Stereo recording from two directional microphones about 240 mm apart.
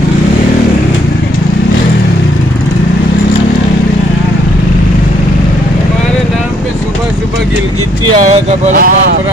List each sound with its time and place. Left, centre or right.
8.2 s speech: right